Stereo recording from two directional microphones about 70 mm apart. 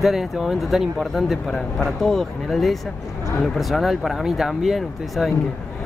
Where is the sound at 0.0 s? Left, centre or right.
Centre.